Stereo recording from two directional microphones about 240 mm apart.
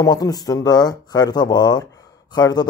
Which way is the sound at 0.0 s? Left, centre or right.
Centre.